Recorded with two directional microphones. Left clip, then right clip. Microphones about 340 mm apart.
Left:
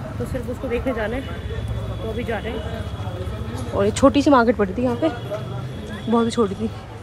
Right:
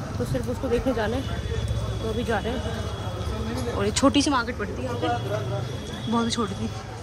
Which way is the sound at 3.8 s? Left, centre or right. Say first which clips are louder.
Left 6 dB; centre.